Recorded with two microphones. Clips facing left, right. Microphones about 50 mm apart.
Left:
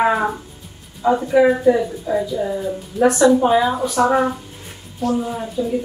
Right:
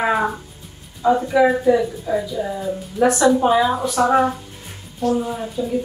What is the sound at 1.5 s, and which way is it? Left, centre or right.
A woman's voice, centre.